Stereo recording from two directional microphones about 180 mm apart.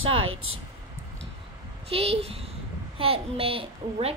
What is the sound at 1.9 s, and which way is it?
A child's voice, 35° right (ahead or behind).